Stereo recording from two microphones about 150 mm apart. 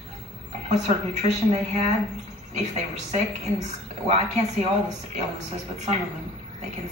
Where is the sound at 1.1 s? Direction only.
50° right (ahead or behind).